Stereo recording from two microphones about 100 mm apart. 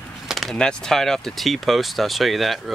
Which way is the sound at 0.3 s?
Centre (ahead or behind).